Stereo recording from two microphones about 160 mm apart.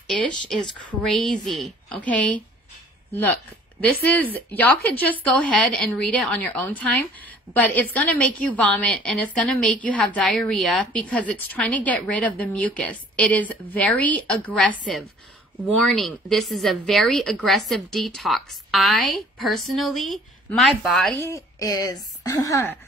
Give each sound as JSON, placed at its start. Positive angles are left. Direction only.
{"t": 0.2, "sound": "speech", "side_deg": 5}
{"t": 3.8, "sound": "a woman's voice", "side_deg": 10}
{"t": 21.2, "sound": "a woman's voice", "side_deg": 20}